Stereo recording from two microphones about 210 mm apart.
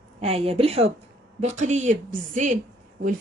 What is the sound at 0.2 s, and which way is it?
A woman's voice, 30° right (ahead or behind).